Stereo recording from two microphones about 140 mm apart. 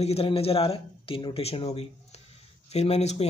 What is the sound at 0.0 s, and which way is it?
A man's voice, 45° left (ahead or behind).